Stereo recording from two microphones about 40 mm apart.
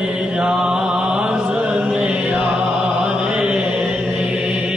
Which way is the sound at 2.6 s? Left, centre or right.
Right.